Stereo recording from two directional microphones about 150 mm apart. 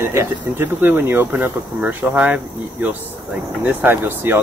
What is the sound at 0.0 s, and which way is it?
Speech, 15° right (ahead or behind).